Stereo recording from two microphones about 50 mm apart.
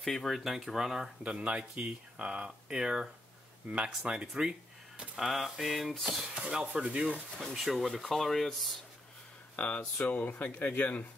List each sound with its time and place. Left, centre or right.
0.0 s speech: centre
1.2 s speech: right
4.4 s a sound: centre
5.1 s speech: centre
6.4 s speech: right
7.5 s speech: centre
9.6 s speech: left